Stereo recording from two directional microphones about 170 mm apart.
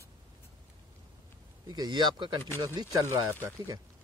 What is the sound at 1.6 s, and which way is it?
Speech, 25° right (ahead or behind).